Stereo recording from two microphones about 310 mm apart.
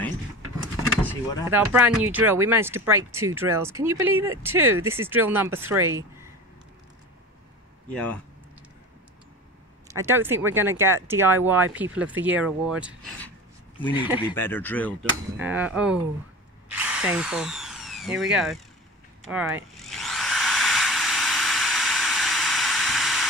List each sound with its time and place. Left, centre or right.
1.5 s speech: centre
7.9 s speech: centre
9.8 s speech: centre
14.3 s speech: centre
15.3 s speech: centre
19.2 s a sound: centre